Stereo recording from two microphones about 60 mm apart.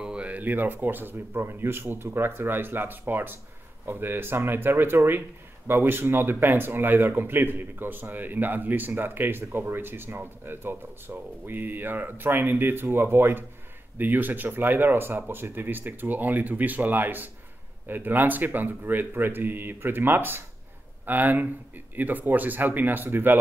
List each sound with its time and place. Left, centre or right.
0.0 s speech: centre